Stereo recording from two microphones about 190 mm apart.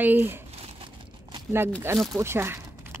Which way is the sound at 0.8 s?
25° right (ahead or behind).